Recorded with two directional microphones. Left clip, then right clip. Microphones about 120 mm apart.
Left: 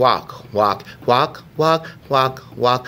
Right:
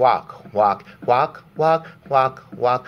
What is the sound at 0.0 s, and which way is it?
Speech, 45° left (ahead or behind).